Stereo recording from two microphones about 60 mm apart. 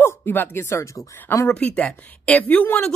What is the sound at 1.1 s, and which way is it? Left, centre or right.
Speech, left.